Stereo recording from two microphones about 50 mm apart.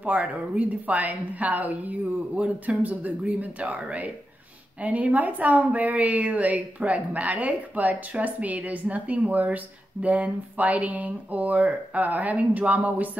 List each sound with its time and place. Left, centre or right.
0.0 s a woman's voice: right